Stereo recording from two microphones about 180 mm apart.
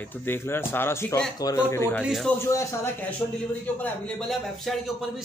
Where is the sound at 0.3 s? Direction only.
10° left (ahead or behind).